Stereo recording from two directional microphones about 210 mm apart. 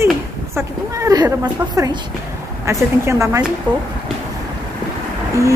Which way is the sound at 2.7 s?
15° right (ahead or behind).